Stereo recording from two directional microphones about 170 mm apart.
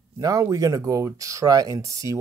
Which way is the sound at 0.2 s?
20° right (ahead or behind).